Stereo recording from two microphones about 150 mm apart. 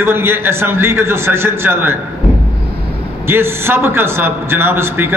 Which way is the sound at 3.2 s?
15° right (ahead or behind).